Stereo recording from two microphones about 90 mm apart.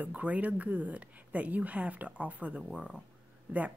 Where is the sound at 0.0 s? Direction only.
15° right (ahead or behind).